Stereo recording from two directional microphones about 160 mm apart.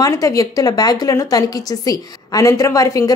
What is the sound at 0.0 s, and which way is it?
A woman's voice, 20° left (ahead or behind).